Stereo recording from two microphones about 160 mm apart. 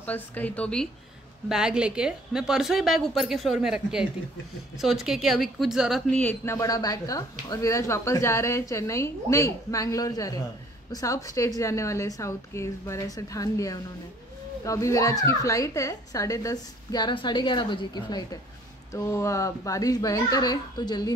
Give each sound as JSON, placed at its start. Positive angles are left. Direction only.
{"t": 0.0, "sound": "speech", "side_deg": 10}
{"t": 1.5, "sound": "a woman's voice", "side_deg": -5}
{"t": 6.1, "sound": "speech", "side_deg": 15}